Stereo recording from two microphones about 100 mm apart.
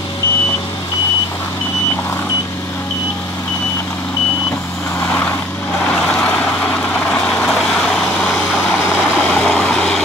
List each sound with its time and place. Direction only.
7.4 s vehicle: 5° left (ahead or behind)
9.3 s vehicle: 5° left (ahead or behind)